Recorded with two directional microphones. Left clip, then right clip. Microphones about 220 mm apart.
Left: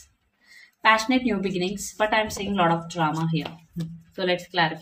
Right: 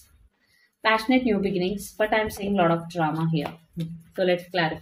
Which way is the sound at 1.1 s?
20° left (ahead or behind).